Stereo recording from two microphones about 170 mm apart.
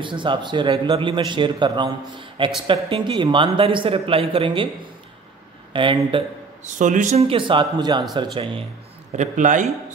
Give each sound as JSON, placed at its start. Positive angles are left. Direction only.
{"t": 0.0, "sound": "a man's voice", "side_deg": -30}
{"t": 5.7, "sound": "a man's voice", "side_deg": -30}
{"t": 6.6, "sound": "speech", "side_deg": -45}
{"t": 9.1, "sound": "speech", "side_deg": -45}